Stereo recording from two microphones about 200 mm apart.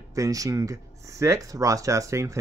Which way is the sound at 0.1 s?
15° right (ahead or behind).